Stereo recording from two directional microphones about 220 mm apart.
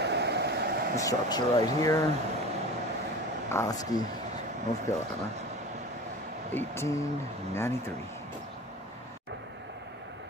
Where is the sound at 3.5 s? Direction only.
15° left (ahead or behind).